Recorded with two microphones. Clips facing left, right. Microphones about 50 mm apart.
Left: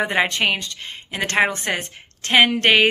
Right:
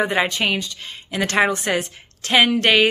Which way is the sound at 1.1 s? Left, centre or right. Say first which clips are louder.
Right 1 dB; left.